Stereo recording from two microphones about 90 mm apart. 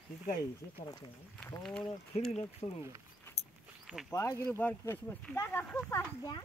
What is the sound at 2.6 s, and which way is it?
Speech, 90° left.